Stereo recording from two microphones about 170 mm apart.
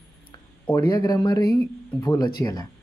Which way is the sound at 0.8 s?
25° left (ahead or behind).